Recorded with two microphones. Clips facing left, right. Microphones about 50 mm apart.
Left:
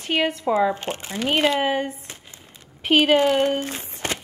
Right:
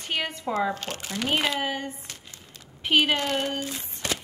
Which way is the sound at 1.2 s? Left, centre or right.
Centre.